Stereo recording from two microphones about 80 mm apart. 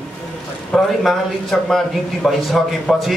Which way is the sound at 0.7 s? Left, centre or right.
Centre.